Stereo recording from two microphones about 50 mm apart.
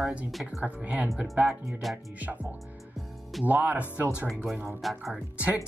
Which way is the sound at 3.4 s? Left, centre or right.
Right.